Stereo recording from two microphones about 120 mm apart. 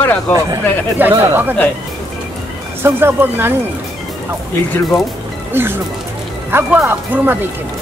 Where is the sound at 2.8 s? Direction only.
20° right (ahead or behind).